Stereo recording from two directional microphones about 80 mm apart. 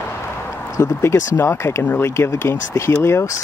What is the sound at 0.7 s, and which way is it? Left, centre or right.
Speech, left.